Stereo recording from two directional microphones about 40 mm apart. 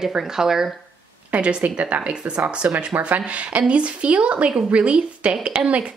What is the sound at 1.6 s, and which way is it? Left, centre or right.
A woman's voice, right.